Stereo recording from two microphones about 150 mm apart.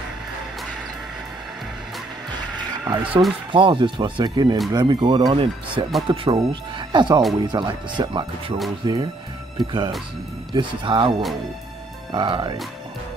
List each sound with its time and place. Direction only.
2.5 s music: 30° right (ahead or behind)
3.1 s speech: centre (ahead or behind)
3.5 s speech: 35° right (ahead or behind)